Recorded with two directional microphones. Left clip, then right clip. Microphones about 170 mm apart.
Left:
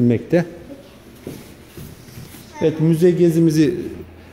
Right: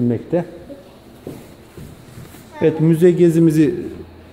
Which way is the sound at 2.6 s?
20° right (ahead or behind).